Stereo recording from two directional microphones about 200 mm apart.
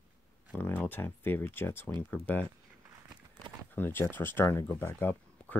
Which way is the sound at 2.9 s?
20° right (ahead or behind).